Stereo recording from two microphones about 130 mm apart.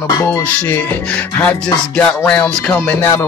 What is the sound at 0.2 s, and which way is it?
Music, 20° left (ahead or behind).